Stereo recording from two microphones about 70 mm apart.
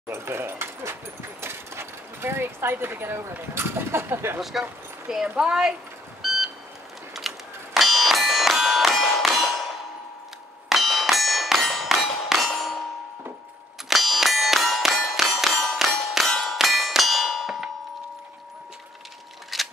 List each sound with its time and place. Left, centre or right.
0.1 s speech: right
1.4 s sewing machine: right
4.4 s speech: centre
6.2 s vehicle: centre
7.2 s a sound: centre
10.7 s bell: centre
12.4 s clang: centre
13.8 s clang: centre
19.5 s scissors: centre